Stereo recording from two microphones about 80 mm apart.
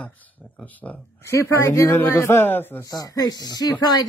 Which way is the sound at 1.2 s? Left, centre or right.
Left.